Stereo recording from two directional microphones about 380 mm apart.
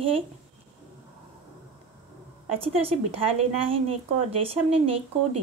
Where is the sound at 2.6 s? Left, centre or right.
Centre.